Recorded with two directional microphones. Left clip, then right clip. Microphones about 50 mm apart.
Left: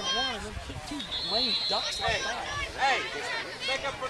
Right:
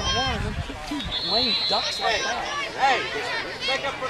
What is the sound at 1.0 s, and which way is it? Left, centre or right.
Speech, centre.